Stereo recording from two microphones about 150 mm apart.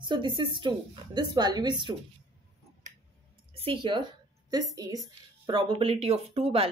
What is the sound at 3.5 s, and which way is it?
Speech, 35° right (ahead or behind).